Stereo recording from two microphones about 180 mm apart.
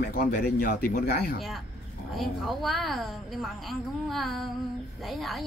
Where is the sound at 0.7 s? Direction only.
50° left (ahead or behind).